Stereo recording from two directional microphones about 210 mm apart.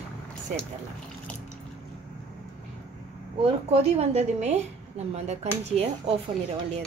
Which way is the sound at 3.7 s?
30° right (ahead or behind).